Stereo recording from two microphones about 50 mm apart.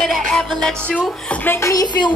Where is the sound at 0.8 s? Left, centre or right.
Left.